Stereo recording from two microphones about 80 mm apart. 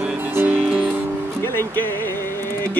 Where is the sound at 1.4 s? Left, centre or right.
Left.